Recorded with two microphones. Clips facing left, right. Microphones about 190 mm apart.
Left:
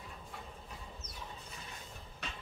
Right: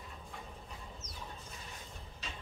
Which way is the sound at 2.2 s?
60° left (ahead or behind).